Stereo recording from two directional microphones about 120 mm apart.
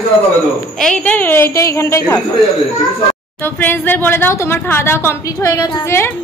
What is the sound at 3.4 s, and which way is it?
A woman's voice, 20° left (ahead or behind).